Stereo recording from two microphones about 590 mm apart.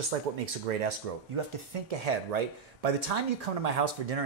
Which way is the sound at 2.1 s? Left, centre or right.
Right.